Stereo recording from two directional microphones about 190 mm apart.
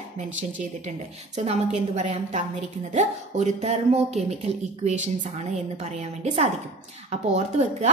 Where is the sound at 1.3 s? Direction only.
35° right (ahead or behind).